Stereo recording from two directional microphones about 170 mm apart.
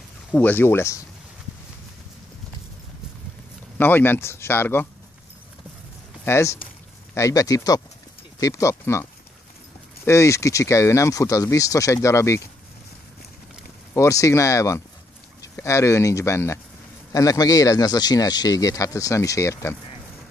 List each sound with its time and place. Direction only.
0.3 s speech: 10° left (ahead or behind)
3.7 s speech: 10° left (ahead or behind)
6.2 s speech: 15° left (ahead or behind)
13.9 s speech: 20° left (ahead or behind)